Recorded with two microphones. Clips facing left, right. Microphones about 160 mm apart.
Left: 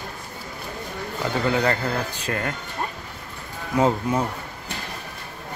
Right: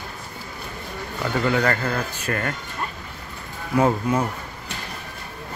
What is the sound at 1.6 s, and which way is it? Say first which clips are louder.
Speech: even; 15° left (ahead or behind).